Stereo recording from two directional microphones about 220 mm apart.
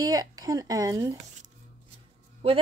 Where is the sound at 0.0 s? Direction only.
15° right (ahead or behind).